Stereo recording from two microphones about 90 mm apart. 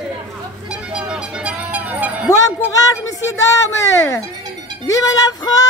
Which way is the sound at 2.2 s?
35° left (ahead or behind).